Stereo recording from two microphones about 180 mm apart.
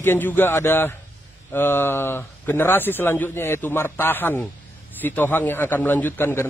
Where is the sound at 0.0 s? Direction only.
10° left (ahead or behind).